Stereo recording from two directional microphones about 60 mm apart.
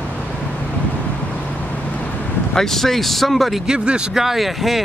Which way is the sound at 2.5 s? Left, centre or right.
Centre.